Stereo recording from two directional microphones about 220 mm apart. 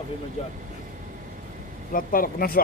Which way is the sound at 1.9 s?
40° left (ahead or behind).